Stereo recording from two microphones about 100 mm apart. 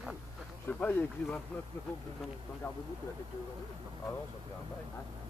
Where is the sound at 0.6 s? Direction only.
20° left (ahead or behind).